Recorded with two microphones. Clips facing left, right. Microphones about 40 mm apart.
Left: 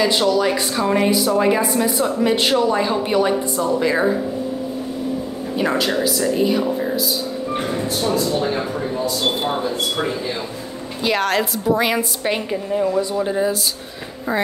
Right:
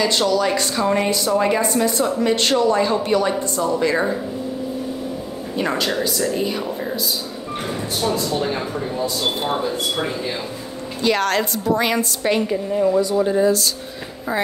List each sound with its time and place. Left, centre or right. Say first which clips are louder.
0.0 s a woman's voice: left 1 dB; centre
5.6 s speech: left 2 dB; centre
8.0 s a woman's voice: left 1 dB; centre